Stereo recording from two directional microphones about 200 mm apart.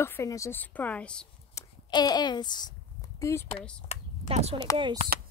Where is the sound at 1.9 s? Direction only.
20° left (ahead or behind).